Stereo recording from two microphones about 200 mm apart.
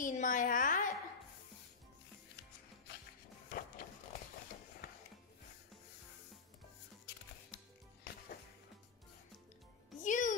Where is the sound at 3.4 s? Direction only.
45° left (ahead or behind).